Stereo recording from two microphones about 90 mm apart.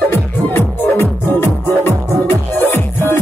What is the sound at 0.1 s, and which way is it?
Music, 25° left (ahead or behind).